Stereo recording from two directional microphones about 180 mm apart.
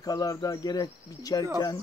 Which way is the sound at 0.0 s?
20° left (ahead or behind).